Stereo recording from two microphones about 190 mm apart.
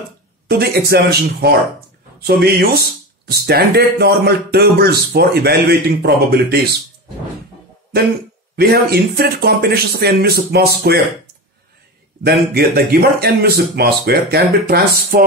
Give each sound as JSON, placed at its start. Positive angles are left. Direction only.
{"t": 0.5, "sound": "speech", "side_deg": -55}
{"t": 8.5, "sound": "speech", "side_deg": -55}
{"t": 12.2, "sound": "speech", "side_deg": -55}